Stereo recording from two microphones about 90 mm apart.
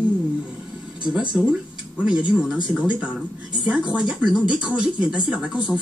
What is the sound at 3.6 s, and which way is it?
A woman's voice, 15° right (ahead or behind).